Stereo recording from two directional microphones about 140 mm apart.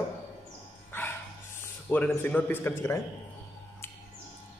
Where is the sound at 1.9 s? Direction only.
10° left (ahead or behind).